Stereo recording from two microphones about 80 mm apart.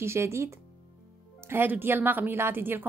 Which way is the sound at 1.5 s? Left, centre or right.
Right.